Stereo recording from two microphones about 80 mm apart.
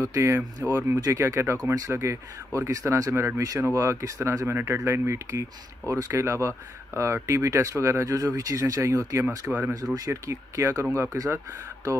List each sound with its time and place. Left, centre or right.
0.0 s speech: right
4.5 s speech: right
9.5 s speech: right
9.9 s speech: right